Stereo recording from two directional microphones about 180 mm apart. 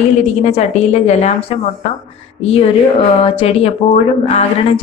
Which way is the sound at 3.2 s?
35° left (ahead or behind).